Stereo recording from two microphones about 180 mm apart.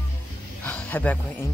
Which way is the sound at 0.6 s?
10° left (ahead or behind).